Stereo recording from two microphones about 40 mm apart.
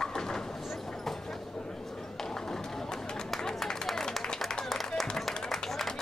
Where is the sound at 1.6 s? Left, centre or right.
Centre.